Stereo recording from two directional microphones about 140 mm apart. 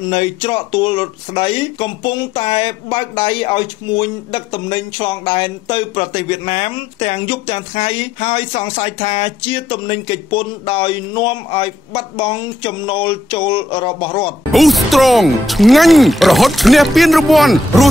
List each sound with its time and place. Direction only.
0.1 s speech: 40° left (ahead or behind)
14.5 s speech: centre (ahead or behind)